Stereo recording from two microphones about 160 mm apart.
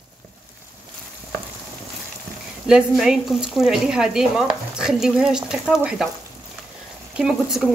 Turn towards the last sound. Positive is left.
turn(degrees=-5)  # may be behind; listen again after turning